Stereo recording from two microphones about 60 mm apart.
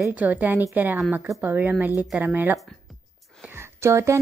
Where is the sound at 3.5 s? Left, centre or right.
Right.